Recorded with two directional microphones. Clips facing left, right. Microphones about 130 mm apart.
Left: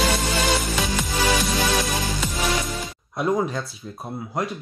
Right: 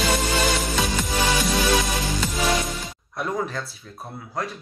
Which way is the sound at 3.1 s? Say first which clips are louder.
Left 4 dB; 20° left (ahead or behind).